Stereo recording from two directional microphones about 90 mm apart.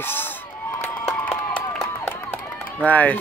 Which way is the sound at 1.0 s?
15° left (ahead or behind).